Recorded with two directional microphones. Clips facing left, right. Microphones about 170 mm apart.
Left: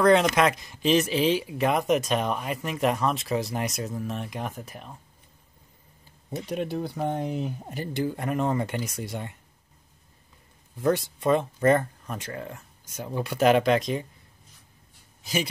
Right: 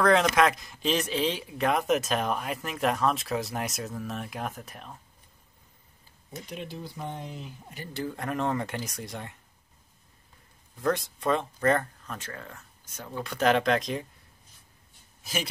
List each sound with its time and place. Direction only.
0.0 s speech: centre (ahead or behind)
6.3 s speech: 55° left (ahead or behind)
7.9 s speech: 10° left (ahead or behind)
10.8 s speech: centre (ahead or behind)